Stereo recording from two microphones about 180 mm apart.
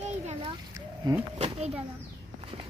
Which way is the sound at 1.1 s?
20° right (ahead or behind).